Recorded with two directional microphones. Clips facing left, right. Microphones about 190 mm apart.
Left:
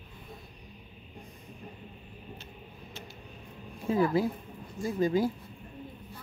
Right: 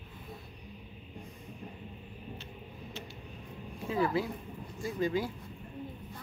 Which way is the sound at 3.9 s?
40° left (ahead or behind).